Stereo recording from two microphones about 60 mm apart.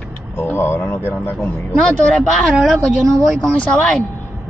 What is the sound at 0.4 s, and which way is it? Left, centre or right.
Speech, left.